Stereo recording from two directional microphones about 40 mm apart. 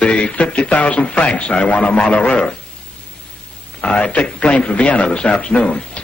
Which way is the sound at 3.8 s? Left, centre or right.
Left.